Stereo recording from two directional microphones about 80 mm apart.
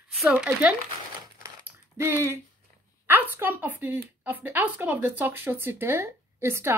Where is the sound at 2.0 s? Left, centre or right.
Right.